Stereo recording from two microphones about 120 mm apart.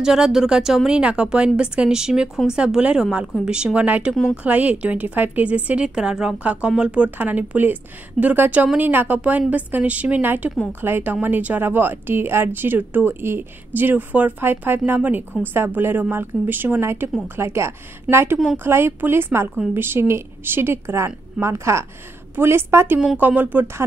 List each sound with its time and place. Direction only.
0.0 s speech: 5° right (ahead or behind)
4.1 s speech: 5° left (ahead or behind)
4.4 s a woman's voice: 10° right (ahead or behind)